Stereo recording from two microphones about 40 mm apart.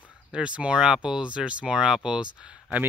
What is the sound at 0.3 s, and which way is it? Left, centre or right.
Speech, right.